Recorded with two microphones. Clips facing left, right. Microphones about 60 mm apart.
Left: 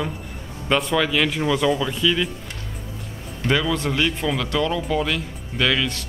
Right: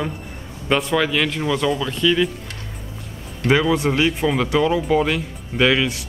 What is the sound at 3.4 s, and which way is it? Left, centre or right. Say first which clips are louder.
Speech: right 4 dB; centre.